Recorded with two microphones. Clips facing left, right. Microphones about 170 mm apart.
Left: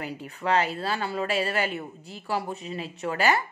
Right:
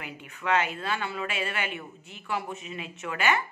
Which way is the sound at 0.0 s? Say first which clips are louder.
Left 4 dB; 35° left (ahead or behind).